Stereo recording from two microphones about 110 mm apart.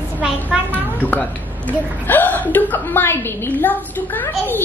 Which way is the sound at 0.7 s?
15° left (ahead or behind).